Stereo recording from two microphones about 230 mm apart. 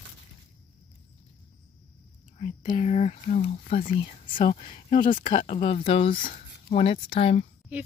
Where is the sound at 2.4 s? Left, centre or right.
Left.